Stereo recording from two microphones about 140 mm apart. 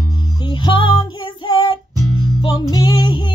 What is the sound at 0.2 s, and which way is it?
Music, 30° left (ahead or behind).